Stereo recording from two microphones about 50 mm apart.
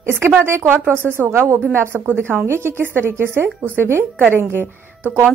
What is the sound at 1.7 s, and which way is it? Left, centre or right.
A woman's voice, right.